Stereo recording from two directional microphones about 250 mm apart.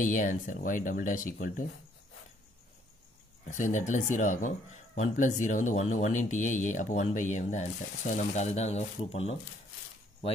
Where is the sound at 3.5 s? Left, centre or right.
Left.